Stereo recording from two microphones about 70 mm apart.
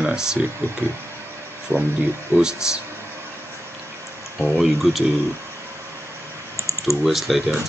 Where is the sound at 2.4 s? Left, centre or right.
Centre.